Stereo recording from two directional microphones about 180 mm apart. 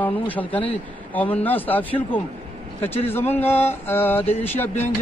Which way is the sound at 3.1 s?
10° left (ahead or behind).